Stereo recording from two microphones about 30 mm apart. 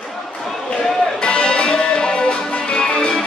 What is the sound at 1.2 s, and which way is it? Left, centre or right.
Music, left.